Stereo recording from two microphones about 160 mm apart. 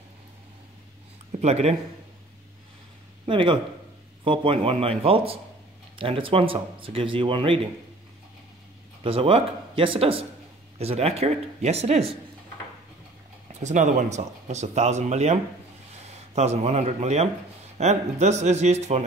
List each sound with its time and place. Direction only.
1.4 s speech: 40° right (ahead or behind)
3.3 s speech: 30° right (ahead or behind)
9.0 s speech: 35° right (ahead or behind)
13.5 s speech: 45° right (ahead or behind)
16.3 s speech: 45° right (ahead or behind)